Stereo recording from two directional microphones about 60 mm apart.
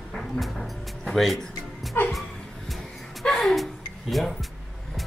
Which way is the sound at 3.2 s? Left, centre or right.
Centre.